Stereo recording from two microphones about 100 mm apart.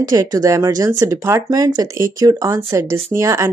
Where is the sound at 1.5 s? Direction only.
40° right (ahead or behind).